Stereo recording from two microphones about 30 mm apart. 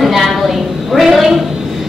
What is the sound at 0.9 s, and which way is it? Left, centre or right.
Speech, right.